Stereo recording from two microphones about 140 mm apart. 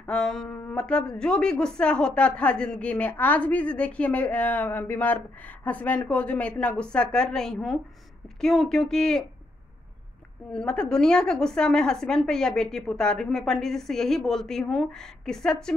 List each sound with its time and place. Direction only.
0.0 s a woman's voice: 5° left (ahead or behind)
10.5 s a woman's voice: 5° left (ahead or behind)